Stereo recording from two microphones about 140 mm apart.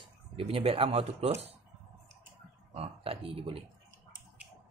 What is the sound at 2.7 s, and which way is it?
Speech, 45° right (ahead or behind).